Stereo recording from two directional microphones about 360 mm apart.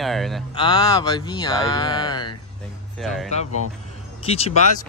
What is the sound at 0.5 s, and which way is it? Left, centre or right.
Speech, centre.